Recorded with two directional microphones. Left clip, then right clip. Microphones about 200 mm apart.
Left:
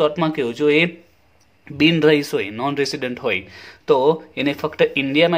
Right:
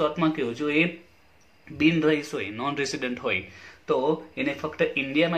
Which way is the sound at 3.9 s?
55° left (ahead or behind).